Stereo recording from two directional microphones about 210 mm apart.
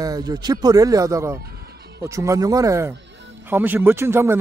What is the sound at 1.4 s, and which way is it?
Music, 50° right (ahead or behind).